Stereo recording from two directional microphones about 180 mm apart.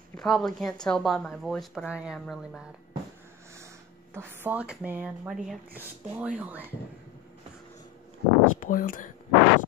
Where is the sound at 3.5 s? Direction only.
15° right (ahead or behind).